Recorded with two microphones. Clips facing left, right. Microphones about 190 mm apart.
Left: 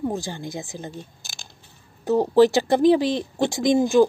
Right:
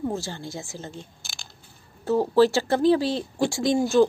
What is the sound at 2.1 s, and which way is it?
Speech, 20° left (ahead or behind).